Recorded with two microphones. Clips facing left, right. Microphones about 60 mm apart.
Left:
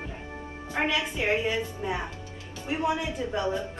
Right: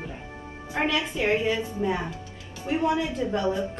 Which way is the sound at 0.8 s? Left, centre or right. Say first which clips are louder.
Right 3 dB; centre.